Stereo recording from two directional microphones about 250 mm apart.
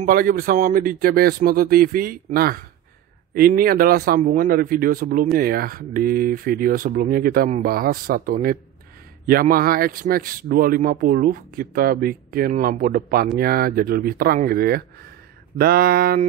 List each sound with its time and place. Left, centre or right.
0.0 s a man's voice: right